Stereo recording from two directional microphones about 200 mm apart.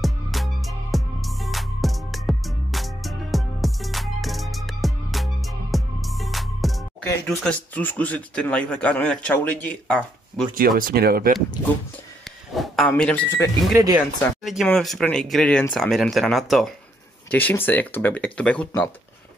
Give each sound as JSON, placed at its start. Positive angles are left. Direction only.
{"t": 0.0, "sound": "music", "side_deg": 0}
{"t": 10.5, "sound": "speech", "side_deg": -45}
{"t": 12.5, "sound": "speech", "side_deg": 5}
{"t": 13.7, "sound": "speech", "side_deg": -15}
{"t": 14.4, "sound": "speech", "side_deg": 0}